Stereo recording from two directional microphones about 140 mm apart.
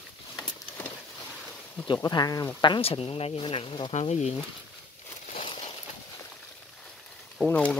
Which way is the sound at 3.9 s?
50° left (ahead or behind).